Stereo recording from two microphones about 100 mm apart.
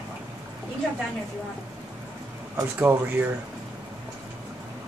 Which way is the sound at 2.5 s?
25° right (ahead or behind).